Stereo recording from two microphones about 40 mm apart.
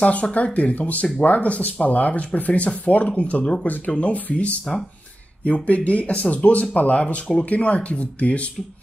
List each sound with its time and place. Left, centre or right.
0.0 s speech: left
3.6 s speech: left
3.9 s speech: left